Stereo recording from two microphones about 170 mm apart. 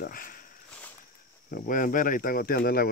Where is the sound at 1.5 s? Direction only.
55° left (ahead or behind).